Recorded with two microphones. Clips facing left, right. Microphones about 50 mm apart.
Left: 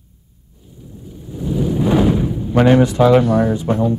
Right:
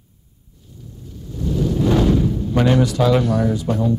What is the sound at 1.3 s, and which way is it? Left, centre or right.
Speech, centre.